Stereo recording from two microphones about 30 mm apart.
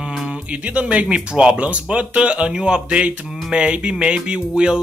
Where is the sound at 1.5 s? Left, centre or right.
Right.